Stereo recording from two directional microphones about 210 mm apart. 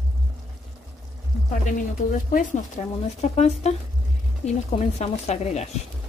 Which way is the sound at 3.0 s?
30° left (ahead or behind).